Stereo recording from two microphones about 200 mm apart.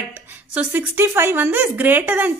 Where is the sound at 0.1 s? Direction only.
10° right (ahead or behind).